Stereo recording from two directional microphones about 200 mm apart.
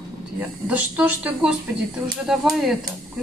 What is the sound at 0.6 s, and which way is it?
A woman's voice, 5° right (ahead or behind).